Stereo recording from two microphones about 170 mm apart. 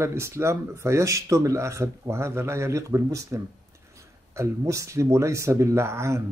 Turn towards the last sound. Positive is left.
turn(degrees=-15)  # may be behind; listen again after turning